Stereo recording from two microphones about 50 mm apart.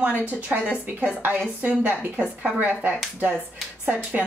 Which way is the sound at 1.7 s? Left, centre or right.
Right.